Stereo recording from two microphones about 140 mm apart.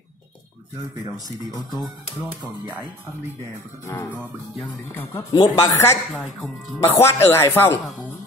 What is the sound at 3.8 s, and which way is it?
Speech, 20° left (ahead or behind).